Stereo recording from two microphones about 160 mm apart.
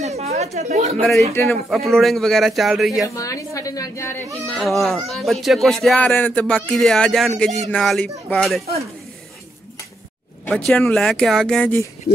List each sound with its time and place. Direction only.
0.0 s a sound: 45° right (ahead or behind)
1.3 s a man's voice: 15° left (ahead or behind)
1.9 s speech: centre (ahead or behind)
3.2 s a woman's voice: 20° left (ahead or behind)
4.6 s speech: centre (ahead or behind)
10.5 s speech: 5° left (ahead or behind)